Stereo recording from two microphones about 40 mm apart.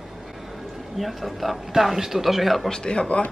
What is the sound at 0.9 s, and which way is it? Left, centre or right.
Speech, centre.